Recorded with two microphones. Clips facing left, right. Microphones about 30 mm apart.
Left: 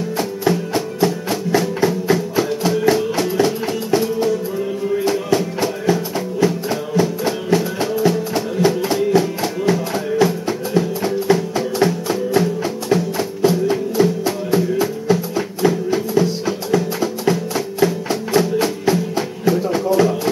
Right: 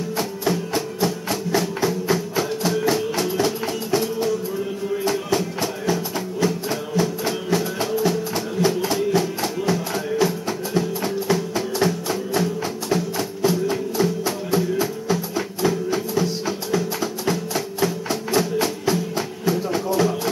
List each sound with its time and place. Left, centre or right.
0.2 s music: centre